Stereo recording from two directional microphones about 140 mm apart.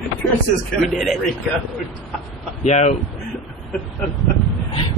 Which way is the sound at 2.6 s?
55° left (ahead or behind).